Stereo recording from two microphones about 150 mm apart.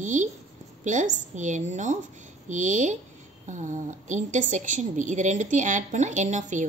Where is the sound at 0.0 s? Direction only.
55° right (ahead or behind).